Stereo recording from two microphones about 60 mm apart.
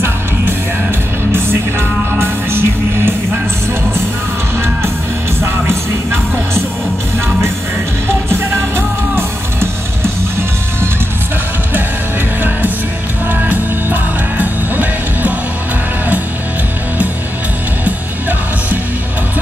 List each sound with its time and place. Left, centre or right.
1.3 s music: right
8.3 s music: right
13.3 s music: right